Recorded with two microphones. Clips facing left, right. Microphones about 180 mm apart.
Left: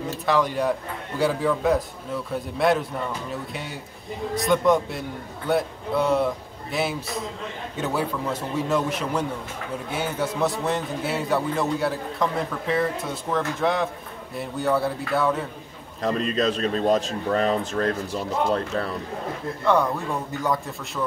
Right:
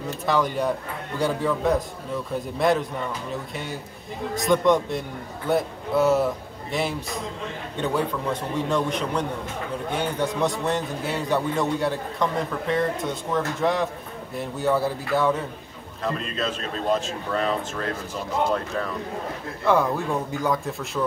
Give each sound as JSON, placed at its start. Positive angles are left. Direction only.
{"t": 0.3, "sound": "a man's voice", "side_deg": 0}
{"t": 4.4, "sound": "a man's voice", "side_deg": 0}
{"t": 16.0, "sound": "a man's voice", "side_deg": 40}
{"t": 19.6, "sound": "a man's voice", "side_deg": 0}